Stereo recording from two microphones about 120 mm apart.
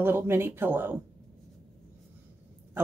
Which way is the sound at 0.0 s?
20° right (ahead or behind).